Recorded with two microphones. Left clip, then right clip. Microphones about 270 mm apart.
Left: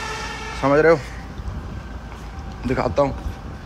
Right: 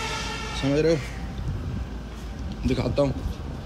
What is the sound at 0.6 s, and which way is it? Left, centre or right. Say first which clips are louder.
Speech: left 8 dB; centre.